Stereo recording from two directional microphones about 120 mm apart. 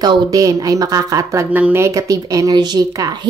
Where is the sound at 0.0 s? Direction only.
30° right (ahead or behind).